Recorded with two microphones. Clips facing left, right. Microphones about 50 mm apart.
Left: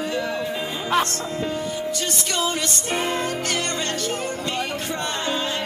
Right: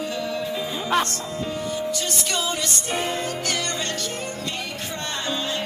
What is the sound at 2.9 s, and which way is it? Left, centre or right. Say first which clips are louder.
Music: left 3 dB; left.